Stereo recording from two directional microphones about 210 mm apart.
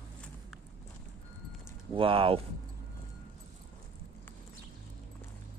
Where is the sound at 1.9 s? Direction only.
25° right (ahead or behind).